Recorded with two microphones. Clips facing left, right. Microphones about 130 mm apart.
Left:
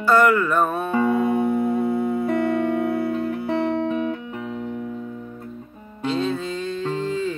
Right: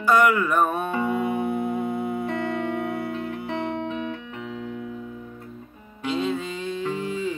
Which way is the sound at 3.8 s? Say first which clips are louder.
Left 6 dB; 40° left (ahead or behind).